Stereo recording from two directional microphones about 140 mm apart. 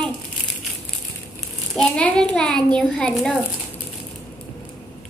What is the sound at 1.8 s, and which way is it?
A child's voice, 5° left (ahead or behind).